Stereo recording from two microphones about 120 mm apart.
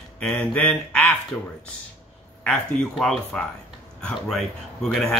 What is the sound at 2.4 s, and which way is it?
Speech, 10° left (ahead or behind).